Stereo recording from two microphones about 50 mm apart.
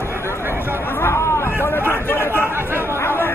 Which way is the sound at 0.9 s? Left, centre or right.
Left.